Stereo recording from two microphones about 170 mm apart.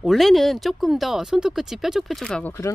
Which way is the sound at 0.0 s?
Centre (ahead or behind).